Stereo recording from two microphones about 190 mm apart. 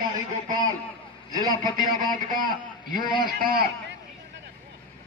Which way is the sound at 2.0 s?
45° right (ahead or behind).